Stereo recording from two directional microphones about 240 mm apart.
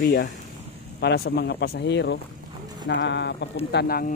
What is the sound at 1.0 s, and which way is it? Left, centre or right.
Speech, left.